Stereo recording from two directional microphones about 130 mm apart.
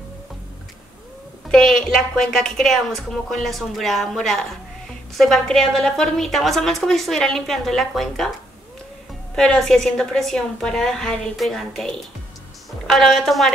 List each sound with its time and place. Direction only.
1.5 s a woman's voice: 5° left (ahead or behind)
9.3 s a woman's voice: 5° left (ahead or behind)